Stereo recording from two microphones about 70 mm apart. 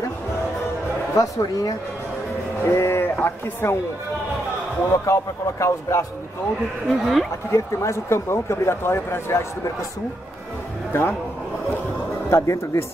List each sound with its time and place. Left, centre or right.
1.1 s speech: left
2.6 s speech: left
5.0 s a man's voice: left
6.9 s speech: centre
7.5 s speech: left
10.9 s a man's voice: left
12.3 s speech: left